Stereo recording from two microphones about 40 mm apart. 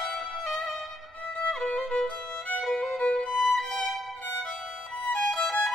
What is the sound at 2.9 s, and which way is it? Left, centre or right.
Violin, centre.